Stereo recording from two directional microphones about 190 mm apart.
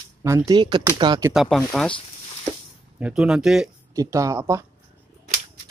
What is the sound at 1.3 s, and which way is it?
Speech, centre (ahead or behind).